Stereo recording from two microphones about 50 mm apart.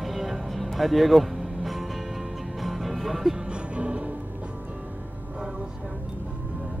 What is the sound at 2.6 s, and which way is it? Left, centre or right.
Music, centre.